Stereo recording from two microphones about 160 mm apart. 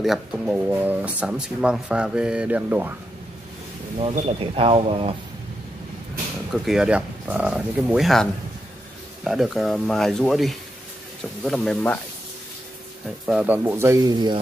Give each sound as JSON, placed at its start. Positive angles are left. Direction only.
{"t": 0.0, "sound": "speech", "side_deg": -5}
{"t": 4.3, "sound": "speech", "side_deg": -35}
{"t": 6.5, "sound": "speech", "side_deg": 0}
{"t": 13.3, "sound": "speech", "side_deg": -10}